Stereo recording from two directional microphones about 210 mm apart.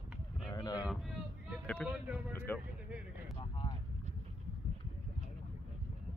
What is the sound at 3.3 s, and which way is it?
Vehicle, 25° left (ahead or behind).